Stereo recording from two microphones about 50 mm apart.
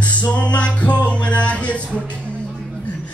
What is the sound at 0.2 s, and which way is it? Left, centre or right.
Music, left.